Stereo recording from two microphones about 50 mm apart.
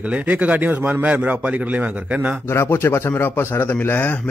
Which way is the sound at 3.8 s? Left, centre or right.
Left.